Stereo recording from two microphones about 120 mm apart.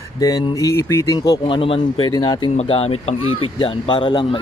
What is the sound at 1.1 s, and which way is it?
Speech, 40° left (ahead or behind).